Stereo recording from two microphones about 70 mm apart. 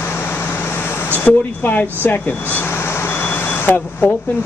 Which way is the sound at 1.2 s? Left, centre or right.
Left.